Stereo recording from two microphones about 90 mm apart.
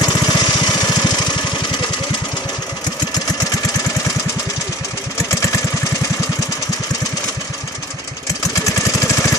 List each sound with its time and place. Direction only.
0.0 s lawn mower: 45° left (ahead or behind)
5.3 s vehicle: 35° left (ahead or behind)
8.6 s lawn mower: 35° left (ahead or behind)